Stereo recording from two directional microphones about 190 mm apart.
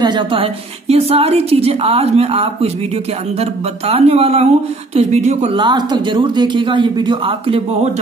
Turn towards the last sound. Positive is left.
turn(degrees=-30)  # may be behind; listen again after turning